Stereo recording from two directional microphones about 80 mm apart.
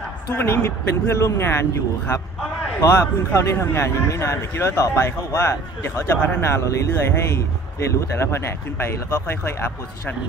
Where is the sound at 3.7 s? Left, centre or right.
Left.